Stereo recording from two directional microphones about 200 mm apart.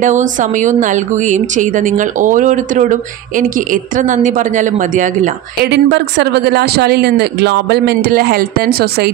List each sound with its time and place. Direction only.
0.0 s speech: 40° right (ahead or behind)
5.7 s speech: 60° right (ahead or behind)